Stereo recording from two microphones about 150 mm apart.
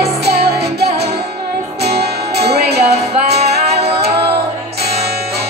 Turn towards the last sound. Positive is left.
turn(degrees=-90)